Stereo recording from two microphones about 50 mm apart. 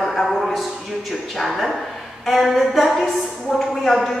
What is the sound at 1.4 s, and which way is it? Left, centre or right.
Speech, centre.